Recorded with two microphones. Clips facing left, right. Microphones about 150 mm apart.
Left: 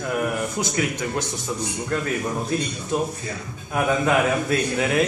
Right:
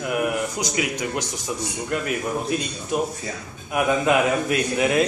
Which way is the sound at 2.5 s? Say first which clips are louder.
Even; 15° right (ahead or behind).